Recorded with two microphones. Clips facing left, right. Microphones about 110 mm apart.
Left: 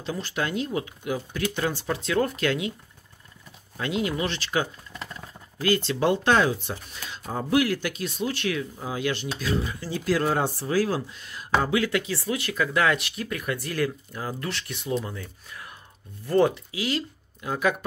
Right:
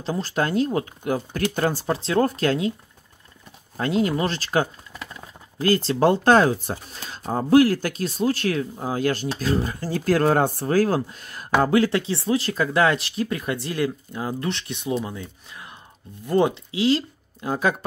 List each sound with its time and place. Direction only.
0.0 s speech: 35° right (ahead or behind)
3.7 s speech: 40° right (ahead or behind)